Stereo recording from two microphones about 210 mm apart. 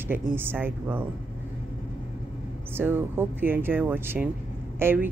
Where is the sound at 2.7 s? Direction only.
10° right (ahead or behind).